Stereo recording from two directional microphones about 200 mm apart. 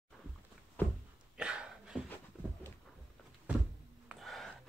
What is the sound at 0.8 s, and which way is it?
Thunk, 10° left (ahead or behind).